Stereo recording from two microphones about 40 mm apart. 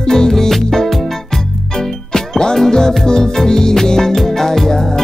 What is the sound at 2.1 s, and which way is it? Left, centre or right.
Music, centre.